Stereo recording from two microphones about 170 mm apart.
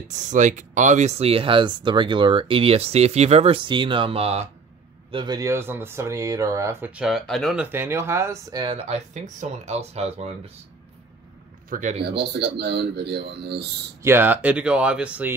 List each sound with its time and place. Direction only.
0.1 s speech: 45° right (ahead or behind)
5.1 s speech: 25° right (ahead or behind); by 7.6 s centre (ahead or behind)
7.6 s speech: 10° right (ahead or behind); by 10.5 s 35° right (ahead or behind)
11.7 s speech: 45° right (ahead or behind)
12.0 s speech: 75° right (ahead or behind)
14.0 s speech: 10° right (ahead or behind)